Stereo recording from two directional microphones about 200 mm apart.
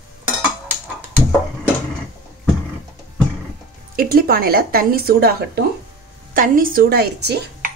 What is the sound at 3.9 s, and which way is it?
Speech, 50° right (ahead or behind).